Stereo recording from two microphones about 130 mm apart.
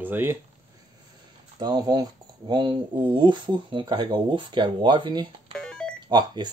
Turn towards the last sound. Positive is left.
turn(degrees=-35)  # may be behind; listen again after turning